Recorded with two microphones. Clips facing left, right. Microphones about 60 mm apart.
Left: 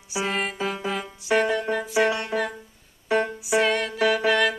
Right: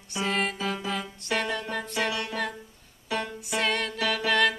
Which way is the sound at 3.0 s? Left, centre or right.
Left.